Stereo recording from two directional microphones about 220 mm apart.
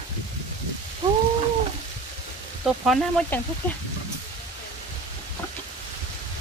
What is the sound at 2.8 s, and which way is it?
Speech, centre (ahead or behind).